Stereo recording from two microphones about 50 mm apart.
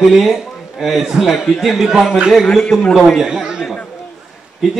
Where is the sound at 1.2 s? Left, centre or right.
Centre.